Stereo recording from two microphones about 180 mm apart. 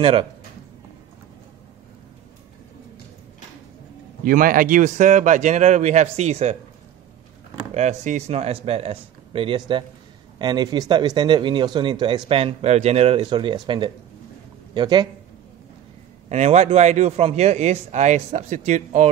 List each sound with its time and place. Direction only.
0.0 s speech: 30° right (ahead or behind)
4.2 s speech: 50° right (ahead or behind)
7.7 s speech: 40° right (ahead or behind)
16.3 s speech: 40° right (ahead or behind)